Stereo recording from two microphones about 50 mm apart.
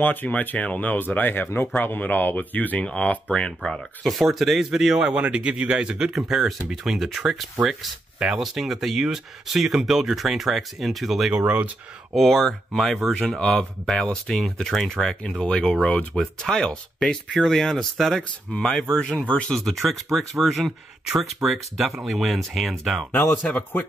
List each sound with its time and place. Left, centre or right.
0.0 s speech: left
0.9 s speech: left
2.8 s speech: left
4.0 s a man's voice: centre
5.2 s a man's voice: right
5.9 s a man's voice: centre
11.3 s a man's voice: right
12.2 s speech: centre; by 16.2 s left
16.3 s speech: centre
18.5 s speech: centre
19.5 s speech: centre
23.1 s speech: left